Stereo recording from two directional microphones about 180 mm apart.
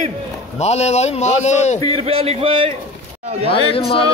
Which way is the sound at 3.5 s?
30° left (ahead or behind).